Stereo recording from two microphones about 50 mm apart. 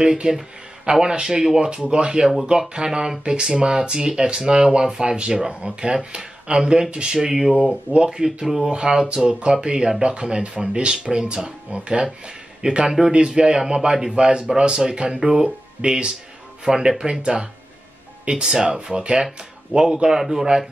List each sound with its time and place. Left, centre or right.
0.0 s speech: centre